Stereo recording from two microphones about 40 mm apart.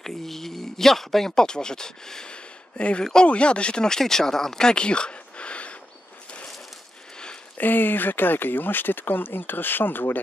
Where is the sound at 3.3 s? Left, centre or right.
Left.